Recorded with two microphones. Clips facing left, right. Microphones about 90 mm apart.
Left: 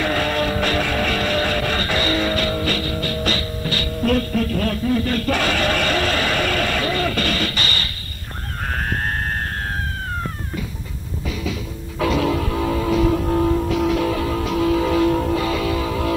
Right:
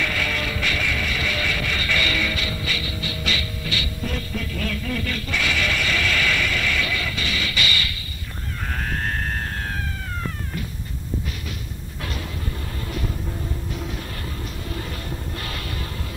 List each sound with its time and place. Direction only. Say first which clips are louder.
0.0 s music: left 6 dB; 40° left (ahead or behind)
12.2 s music: left 13 dB; 90° left